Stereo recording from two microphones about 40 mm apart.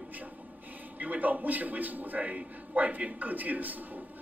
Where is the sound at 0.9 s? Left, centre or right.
Right.